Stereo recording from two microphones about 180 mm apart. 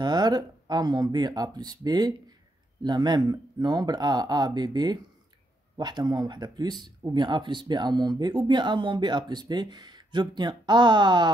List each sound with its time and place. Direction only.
0.0 s speech: 20° right (ahead or behind)